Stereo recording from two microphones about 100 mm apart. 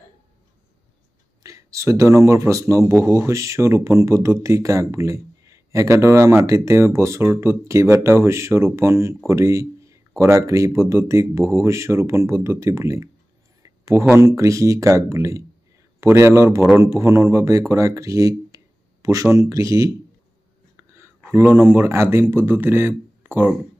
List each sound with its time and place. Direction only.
1.4 s a man's voice: 30° right (ahead or behind)
13.6 s a sound: 30° right (ahead or behind)
14.1 s a man's voice: 30° right (ahead or behind)
20.7 s whispering: 25° right (ahead or behind)
21.3 s a man's voice: 20° right (ahead or behind)